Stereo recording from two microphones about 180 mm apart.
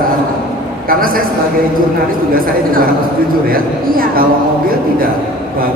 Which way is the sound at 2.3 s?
50° right (ahead or behind).